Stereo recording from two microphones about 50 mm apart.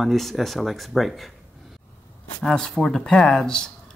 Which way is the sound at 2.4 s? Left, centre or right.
Centre.